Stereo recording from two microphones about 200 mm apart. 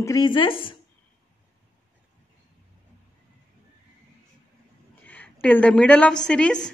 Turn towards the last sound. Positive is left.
turn(degrees=5)  # may be behind; listen again after turning